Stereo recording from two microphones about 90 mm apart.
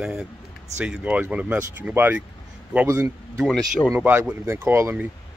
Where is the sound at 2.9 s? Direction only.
35° right (ahead or behind).